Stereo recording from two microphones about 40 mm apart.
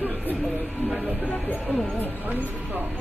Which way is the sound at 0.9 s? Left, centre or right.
Right.